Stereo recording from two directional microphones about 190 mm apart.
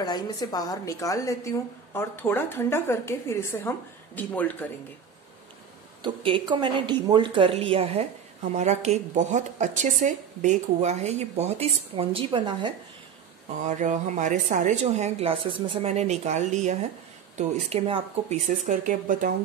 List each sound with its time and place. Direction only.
0.0 s a woman's voice: 20° left (ahead or behind)
6.0 s a woman's voice: 25° right (ahead or behind)
13.6 s speech: 40° right (ahead or behind)